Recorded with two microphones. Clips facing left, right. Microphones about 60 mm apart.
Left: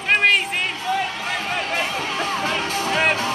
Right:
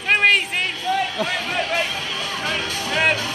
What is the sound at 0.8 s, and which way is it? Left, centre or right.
Music, left.